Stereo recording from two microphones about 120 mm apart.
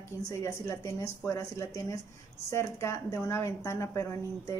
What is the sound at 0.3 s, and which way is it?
A woman's voice, 25° left (ahead or behind).